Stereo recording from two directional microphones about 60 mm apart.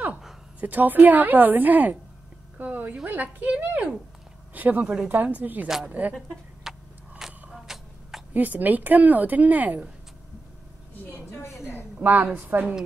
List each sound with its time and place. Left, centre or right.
0.6 s speech: right
2.5 s a sound: right
3.1 s speech: right
6.7 s vehicle: centre
7.2 s a sound: centre
8.3 s speech: right
12.0 s speech: right